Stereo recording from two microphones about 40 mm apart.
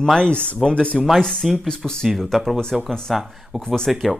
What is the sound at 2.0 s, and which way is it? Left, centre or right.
A man's voice, centre.